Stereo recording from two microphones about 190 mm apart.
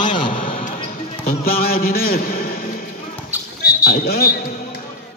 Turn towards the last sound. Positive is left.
turn(degrees=55)  # may be behind; listen again after turning